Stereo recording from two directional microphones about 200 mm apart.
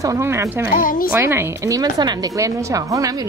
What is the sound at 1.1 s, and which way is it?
A woman's voice, 10° right (ahead or behind).